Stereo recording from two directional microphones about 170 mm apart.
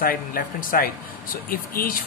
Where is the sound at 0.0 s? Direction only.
60° left (ahead or behind).